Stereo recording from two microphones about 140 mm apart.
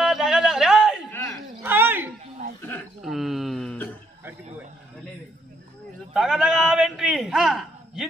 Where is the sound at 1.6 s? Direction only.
15° right (ahead or behind).